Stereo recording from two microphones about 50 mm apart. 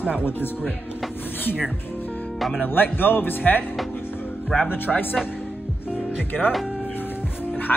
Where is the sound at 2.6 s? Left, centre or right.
Left.